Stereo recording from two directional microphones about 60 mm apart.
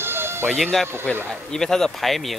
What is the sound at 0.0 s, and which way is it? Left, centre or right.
Music, right.